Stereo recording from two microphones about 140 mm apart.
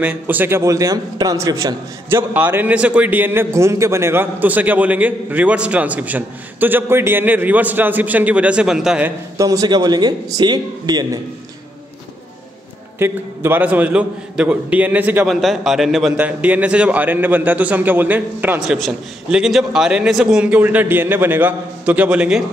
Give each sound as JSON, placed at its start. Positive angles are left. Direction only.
{"t": 0.0, "sound": "a man's voice", "side_deg": -15}
{"t": 9.4, "sound": "a man's voice", "side_deg": -25}
{"t": 13.0, "sound": "a man's voice", "side_deg": -15}
{"t": 18.6, "sound": "a man's voice", "side_deg": 0}